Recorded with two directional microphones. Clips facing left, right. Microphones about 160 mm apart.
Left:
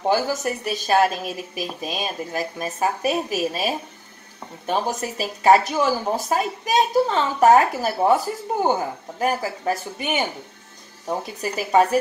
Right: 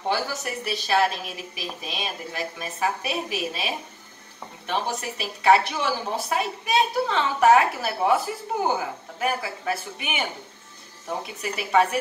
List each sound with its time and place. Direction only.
0.1 s a woman's voice: 45° left (ahead or behind)
9.2 s speech: 40° left (ahead or behind)